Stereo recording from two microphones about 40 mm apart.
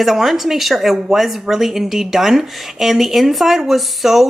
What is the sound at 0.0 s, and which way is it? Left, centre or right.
A woman's voice, centre.